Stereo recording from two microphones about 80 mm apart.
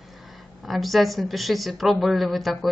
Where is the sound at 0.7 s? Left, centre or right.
Centre.